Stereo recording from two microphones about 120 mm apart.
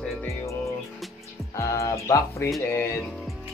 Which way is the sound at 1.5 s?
25° left (ahead or behind).